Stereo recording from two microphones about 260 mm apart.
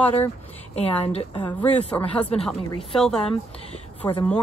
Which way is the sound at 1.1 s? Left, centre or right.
Left.